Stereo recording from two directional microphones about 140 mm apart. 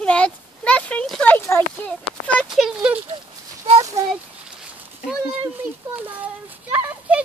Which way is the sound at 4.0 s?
25° right (ahead or behind).